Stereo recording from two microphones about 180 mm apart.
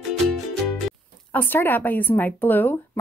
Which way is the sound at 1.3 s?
10° left (ahead or behind).